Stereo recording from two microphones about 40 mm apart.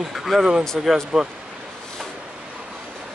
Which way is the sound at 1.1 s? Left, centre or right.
Right.